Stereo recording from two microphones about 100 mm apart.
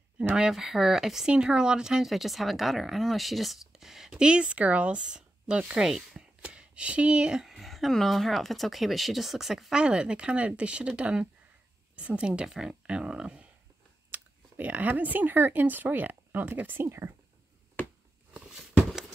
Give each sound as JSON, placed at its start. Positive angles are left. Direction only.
{"t": 0.2, "sound": "speech", "side_deg": -10}
{"t": 18.3, "sound": "walk", "side_deg": -5}